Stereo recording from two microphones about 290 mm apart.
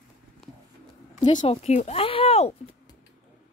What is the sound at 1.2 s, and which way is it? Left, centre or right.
Speech, centre.